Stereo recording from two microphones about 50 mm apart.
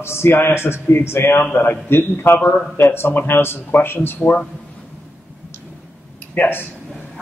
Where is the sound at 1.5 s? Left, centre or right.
Left.